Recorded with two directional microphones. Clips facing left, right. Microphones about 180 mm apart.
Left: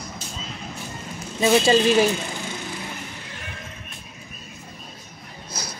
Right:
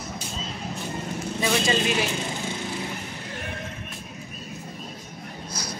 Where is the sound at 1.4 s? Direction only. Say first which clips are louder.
Left 7 dB; 35° left (ahead or behind).